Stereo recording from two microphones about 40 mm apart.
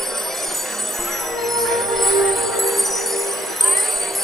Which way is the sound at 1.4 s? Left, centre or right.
Centre.